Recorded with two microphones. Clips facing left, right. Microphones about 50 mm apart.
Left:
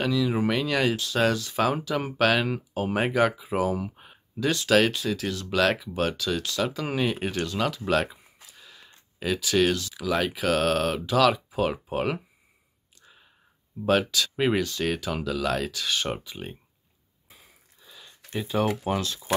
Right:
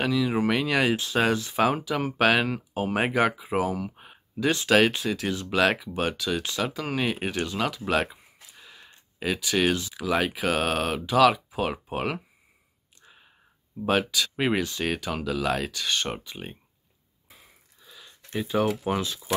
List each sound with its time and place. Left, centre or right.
0.0 s speech: centre
1.5 s speech: centre
3.9 s a sound: centre
4.6 s speech: centre
5.3 s speech: centre
6.7 s speech: centre
13.0 s a sound: centre
13.8 s speech: centre
14.6 s speech: centre
14.9 s speech: centre
17.3 s wheeze: centre
18.4 s speech: centre